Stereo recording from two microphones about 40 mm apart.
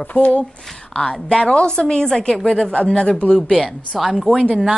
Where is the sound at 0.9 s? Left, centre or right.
Left.